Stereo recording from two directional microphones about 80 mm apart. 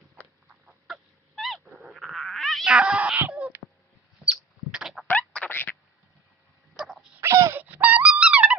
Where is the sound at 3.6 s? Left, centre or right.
Left.